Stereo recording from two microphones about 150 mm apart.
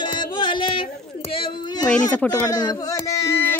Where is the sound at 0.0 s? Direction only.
30° left (ahead or behind).